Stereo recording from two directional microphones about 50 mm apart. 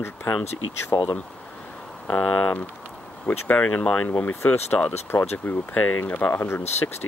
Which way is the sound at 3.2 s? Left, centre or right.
Left.